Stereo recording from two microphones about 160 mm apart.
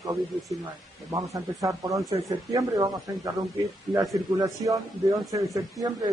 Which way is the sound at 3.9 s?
20° right (ahead or behind).